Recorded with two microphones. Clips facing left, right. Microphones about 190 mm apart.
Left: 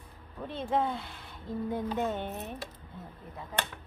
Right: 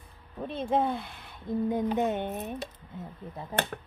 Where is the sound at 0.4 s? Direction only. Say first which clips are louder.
Right 3 dB; 20° right (ahead or behind).